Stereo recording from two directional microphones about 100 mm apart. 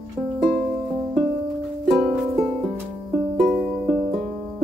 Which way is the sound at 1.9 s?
5° right (ahead or behind).